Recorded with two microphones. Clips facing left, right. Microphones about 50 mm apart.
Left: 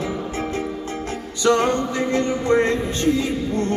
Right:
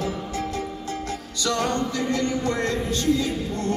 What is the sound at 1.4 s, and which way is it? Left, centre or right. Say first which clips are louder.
Music: left 6 dB; left.